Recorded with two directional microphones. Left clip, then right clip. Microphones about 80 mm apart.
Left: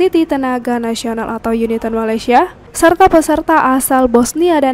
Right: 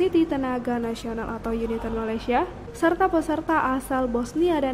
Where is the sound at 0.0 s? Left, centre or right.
Left.